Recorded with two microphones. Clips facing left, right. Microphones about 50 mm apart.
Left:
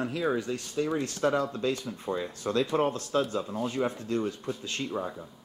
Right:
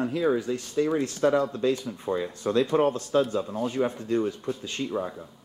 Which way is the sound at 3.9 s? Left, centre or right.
Right.